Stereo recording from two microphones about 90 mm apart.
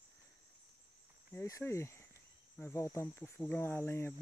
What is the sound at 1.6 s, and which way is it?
Speech, 30° left (ahead or behind).